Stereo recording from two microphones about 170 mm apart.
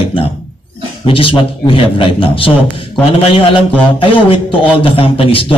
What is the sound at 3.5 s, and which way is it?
A man's voice, 30° left (ahead or behind).